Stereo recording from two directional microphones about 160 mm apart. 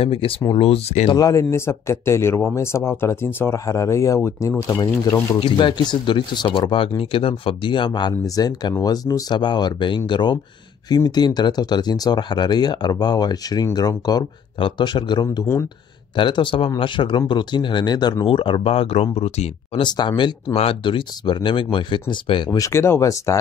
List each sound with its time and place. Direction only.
0.0 s speech: 35° left (ahead or behind)
1.1 s speech: 20° left (ahead or behind); by 19.8 s 40° left (ahead or behind)
19.8 s speech: 30° left (ahead or behind)